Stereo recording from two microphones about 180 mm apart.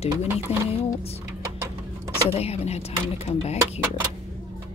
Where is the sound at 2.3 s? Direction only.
35° left (ahead or behind).